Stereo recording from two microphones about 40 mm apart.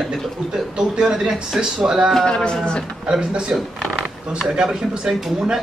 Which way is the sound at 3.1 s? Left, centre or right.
Right.